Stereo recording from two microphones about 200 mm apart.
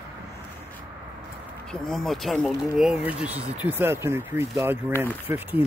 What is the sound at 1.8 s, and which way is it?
Speech, centre (ahead or behind).